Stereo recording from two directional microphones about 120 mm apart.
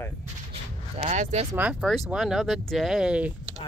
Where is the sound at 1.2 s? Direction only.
70° right (ahead or behind).